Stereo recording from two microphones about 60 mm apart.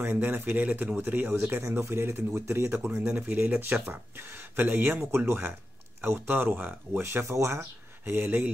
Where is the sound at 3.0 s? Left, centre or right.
Right.